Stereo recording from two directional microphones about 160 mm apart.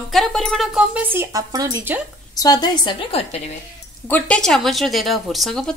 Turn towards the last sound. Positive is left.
turn(degrees=0)  # may be behind; listen again after turning